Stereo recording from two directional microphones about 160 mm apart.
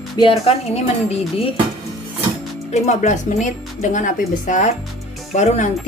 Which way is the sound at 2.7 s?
45° left (ahead or behind).